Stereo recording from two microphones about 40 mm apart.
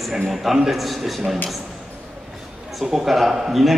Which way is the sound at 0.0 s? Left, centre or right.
Centre.